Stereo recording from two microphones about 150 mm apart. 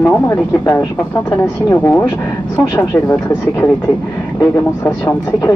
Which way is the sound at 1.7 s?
15° left (ahead or behind).